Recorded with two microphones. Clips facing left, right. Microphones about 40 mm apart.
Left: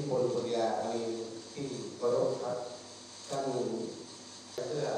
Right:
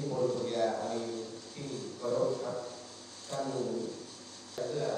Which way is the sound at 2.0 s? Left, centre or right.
Centre.